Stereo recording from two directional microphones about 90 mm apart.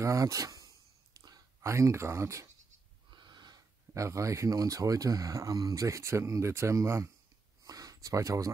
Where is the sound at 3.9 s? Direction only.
35° right (ahead or behind).